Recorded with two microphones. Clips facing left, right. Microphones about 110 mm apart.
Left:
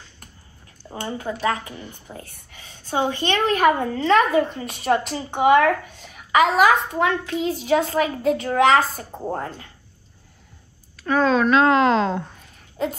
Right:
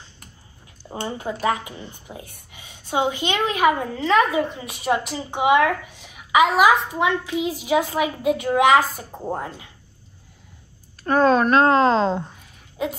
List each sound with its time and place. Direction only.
1.0 s a woman's voice: 20° right (ahead or behind)
11.0 s a woman's voice: 45° right (ahead or behind); by 12.3 s 30° right (ahead or behind)
12.8 s a woman's voice: 5° right (ahead or behind)